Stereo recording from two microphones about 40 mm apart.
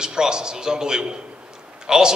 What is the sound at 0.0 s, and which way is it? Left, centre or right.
A man's voice, centre.